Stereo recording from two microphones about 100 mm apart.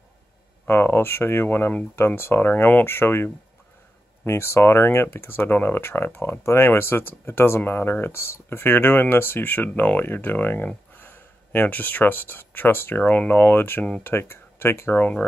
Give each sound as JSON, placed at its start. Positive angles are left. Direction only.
{"t": 0.7, "sound": "speech", "side_deg": 20}